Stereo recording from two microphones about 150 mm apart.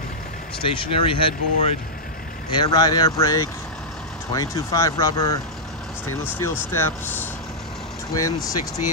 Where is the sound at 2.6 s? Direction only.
25° left (ahead or behind).